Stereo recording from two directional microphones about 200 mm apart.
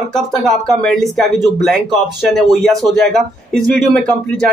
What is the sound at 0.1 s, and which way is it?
Speech, centre (ahead or behind).